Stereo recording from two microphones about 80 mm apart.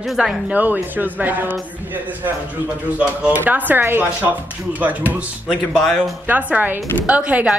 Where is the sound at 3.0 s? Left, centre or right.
Centre.